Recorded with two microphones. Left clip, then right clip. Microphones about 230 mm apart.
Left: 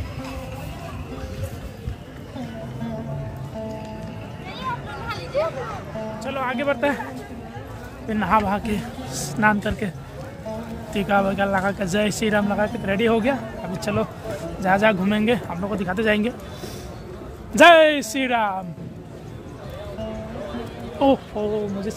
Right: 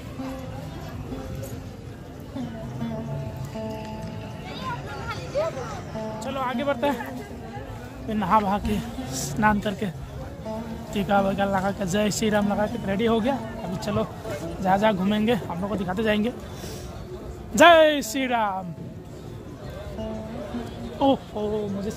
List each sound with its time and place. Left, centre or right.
5.0 s chatter: left
6.1 s speech: centre
8.1 s speech: centre
17.6 s speech: centre
21.0 s speech: centre